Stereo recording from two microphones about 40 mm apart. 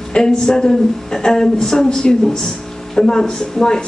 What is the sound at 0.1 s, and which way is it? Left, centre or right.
Speech, centre.